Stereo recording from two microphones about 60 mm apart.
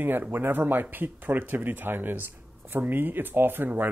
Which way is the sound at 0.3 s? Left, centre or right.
Right.